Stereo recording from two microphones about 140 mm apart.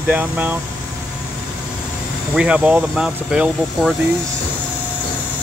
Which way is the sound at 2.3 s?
10° right (ahead or behind).